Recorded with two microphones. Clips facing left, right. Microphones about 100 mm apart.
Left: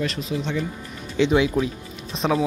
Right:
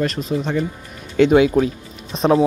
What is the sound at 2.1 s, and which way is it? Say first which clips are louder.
Speech: right 6 dB; 35° right (ahead or behind).